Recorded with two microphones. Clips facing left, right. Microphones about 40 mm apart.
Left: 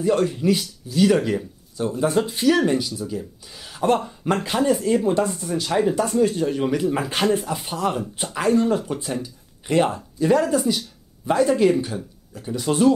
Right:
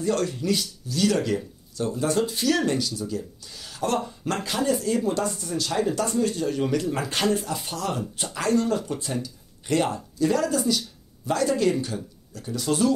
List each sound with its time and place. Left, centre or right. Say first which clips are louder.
0.0 s speech: left 5 dB; centre